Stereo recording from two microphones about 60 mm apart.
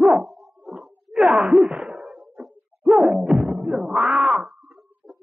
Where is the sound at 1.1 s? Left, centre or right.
Centre.